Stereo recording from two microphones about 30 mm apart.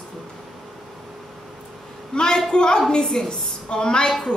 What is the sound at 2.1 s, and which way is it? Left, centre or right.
Speech, left.